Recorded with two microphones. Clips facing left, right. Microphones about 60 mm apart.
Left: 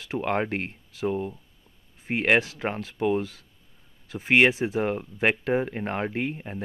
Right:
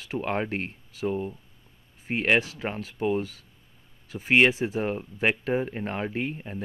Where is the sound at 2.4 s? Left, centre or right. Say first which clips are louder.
Left 2 dB; left.